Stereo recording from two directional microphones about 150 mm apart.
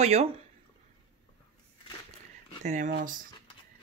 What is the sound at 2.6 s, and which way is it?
Speech, 55° right (ahead or behind).